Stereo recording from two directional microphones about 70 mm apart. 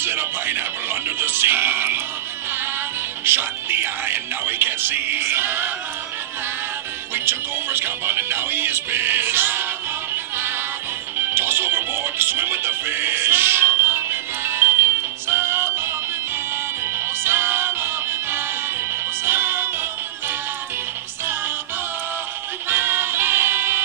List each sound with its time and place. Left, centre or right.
0.0 s music: right
3.3 s speech: right
7.2 s speech: right
10.1 s music: right
22.7 s music: right